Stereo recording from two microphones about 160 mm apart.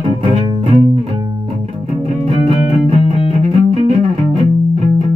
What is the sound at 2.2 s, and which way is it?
Music, 40° right (ahead or behind).